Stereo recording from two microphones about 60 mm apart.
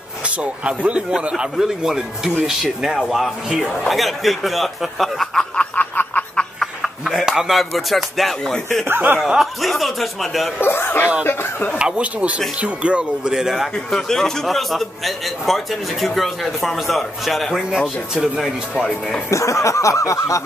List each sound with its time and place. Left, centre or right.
0.4 s a man's voice: centre
5.8 s snicker: left
6.6 s music: centre
8.8 s speech: right
9.2 s a man's voice: centre
10.6 s speech: left
11.8 s speech: right
13.3 s speech: centre
13.8 s a man's voice: centre
19.3 s speech: left